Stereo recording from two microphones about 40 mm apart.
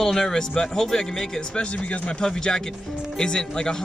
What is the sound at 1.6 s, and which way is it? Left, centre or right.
Speech, left.